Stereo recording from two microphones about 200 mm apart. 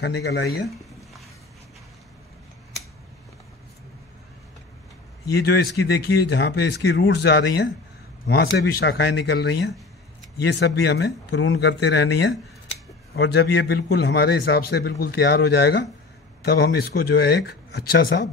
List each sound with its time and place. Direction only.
0.0 s a man's voice: 55° left (ahead or behind)
5.2 s a man's voice: 50° left (ahead or behind)